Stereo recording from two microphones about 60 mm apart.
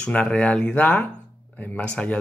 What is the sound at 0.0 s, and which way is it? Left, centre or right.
Speech, centre.